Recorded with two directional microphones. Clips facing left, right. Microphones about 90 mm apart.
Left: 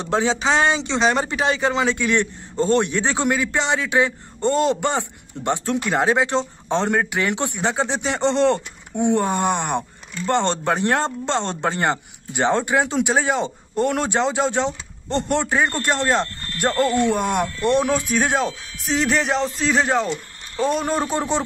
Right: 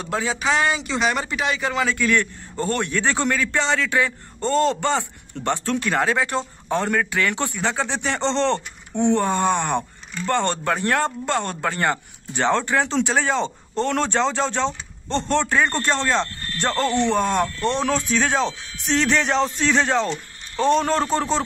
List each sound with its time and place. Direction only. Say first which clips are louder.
0.0 s speech: left 4 dB; 25° left (ahead or behind)